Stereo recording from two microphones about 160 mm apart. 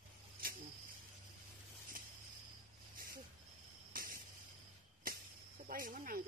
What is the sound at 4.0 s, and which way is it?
Cricket, 60° right (ahead or behind).